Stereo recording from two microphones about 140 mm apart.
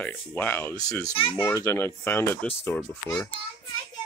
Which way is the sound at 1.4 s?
20° left (ahead or behind).